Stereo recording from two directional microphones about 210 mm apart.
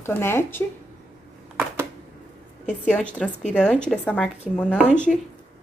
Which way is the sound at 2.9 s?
5° left (ahead or behind).